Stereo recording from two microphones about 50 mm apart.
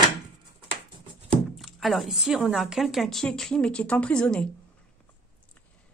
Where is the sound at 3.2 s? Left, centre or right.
Centre.